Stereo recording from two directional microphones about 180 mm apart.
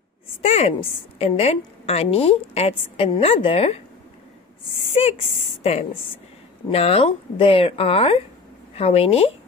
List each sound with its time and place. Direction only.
0.4 s a woman's voice: 35° left (ahead or behind)